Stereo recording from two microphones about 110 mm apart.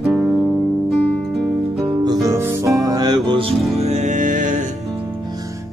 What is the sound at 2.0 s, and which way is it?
Music, 35° right (ahead or behind).